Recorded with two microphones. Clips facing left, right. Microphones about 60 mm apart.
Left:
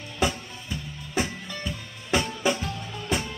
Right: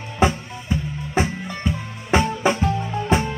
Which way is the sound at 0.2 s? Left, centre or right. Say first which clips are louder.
Right 7 dB; right.